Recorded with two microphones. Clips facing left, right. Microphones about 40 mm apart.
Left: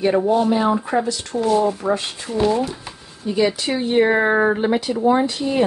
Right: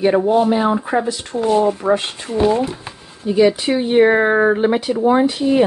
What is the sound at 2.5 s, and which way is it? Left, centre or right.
Speech, right.